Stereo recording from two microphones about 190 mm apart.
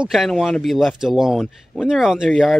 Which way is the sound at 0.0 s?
Centre (ahead or behind).